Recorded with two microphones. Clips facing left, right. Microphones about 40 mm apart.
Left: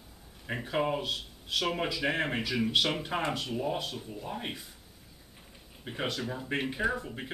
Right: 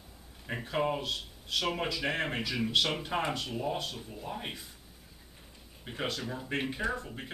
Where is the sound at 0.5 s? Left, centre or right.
Centre.